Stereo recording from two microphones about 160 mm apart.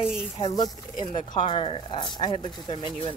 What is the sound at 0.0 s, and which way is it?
Speech, 5° right (ahead or behind).